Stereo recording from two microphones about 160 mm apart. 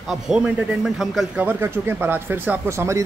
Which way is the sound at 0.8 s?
Centre (ahead or behind).